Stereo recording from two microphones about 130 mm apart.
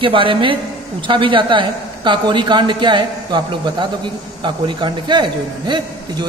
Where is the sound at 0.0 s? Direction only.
40° right (ahead or behind).